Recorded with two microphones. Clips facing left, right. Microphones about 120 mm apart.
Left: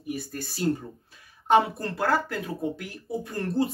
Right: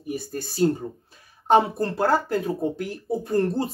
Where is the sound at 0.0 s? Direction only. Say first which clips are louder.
Right 3 dB; 30° right (ahead or behind).